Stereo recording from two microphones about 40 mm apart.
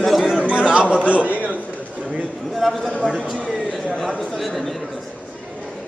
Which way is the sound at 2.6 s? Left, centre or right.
Centre.